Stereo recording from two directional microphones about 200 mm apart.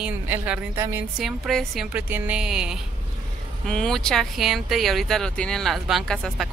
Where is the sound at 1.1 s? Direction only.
Centre (ahead or behind).